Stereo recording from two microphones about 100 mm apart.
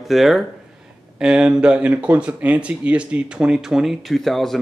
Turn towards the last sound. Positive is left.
turn(degrees=0)  # may be behind; listen again after turning